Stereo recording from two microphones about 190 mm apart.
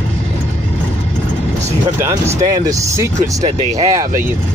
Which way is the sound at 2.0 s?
15° right (ahead or behind).